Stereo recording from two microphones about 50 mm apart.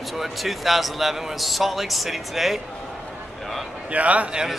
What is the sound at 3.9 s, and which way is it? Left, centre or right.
Speech, right.